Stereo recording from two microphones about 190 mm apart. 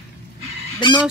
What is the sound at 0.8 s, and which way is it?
Speech, 25° left (ahead or behind).